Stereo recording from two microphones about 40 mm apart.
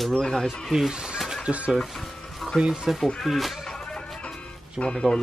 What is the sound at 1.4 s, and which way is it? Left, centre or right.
Speech, right.